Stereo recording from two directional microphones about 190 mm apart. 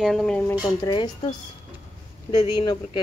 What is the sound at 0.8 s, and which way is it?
Speech, 25° left (ahead or behind).